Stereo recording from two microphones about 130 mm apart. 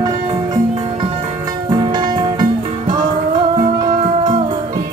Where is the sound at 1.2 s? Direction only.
30° right (ahead or behind).